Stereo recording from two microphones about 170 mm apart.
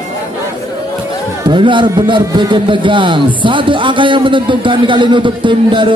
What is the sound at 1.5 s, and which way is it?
A man's voice, 30° right (ahead or behind).